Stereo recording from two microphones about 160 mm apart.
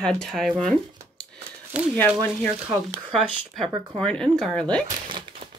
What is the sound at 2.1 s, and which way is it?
Speech, 5° right (ahead or behind).